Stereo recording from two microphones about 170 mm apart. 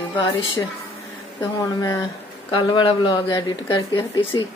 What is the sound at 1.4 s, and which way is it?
Speech, 20° left (ahead or behind).